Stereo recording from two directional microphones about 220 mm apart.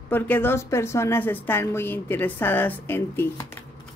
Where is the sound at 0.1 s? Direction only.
10° left (ahead or behind).